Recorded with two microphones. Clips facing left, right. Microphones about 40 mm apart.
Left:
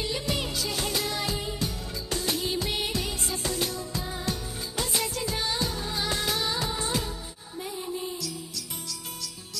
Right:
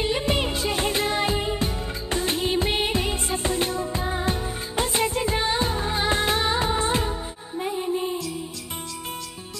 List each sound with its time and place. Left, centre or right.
0.0 s music: right